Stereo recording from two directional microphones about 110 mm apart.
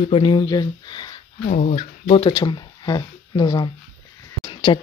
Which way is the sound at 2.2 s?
40° left (ahead or behind).